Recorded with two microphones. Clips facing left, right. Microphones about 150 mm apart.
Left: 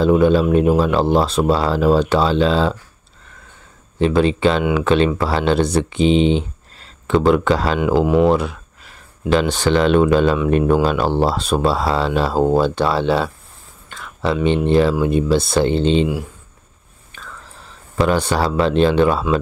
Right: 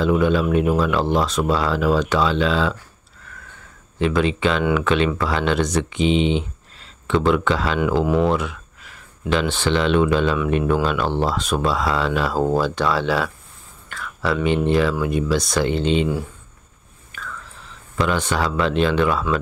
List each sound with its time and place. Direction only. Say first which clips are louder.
0.0 s speech: left 4 dB; 35° left (ahead or behind)
4.0 s speech: left 4 dB; 35° left (ahead or behind)
7.8 s speech: left 4 dB; 20° left (ahead or behind)
8.3 s a sound: left 5 dB; 35° left (ahead or behind)
9.3 s speech: left 4 dB; 40° left (ahead or behind)
17.1 s whispering: right 2 dB; 30° left (ahead or behind)